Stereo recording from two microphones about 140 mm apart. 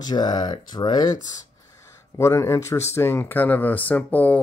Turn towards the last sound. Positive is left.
turn(degrees=10)  # may be behind; listen again after turning